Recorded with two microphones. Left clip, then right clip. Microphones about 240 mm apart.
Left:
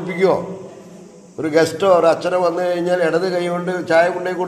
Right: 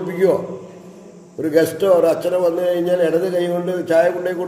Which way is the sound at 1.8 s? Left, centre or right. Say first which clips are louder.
Left 1 dB; left.